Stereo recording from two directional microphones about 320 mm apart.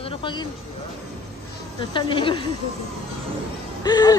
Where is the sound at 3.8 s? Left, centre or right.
Centre.